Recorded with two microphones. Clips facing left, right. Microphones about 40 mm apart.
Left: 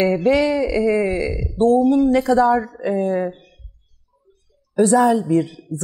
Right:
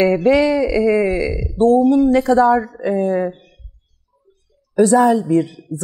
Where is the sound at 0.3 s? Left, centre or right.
Right.